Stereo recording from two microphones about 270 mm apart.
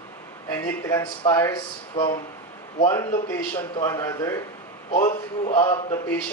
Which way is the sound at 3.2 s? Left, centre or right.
Centre.